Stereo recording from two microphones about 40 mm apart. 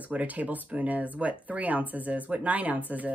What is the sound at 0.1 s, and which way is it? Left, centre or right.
Speech, right.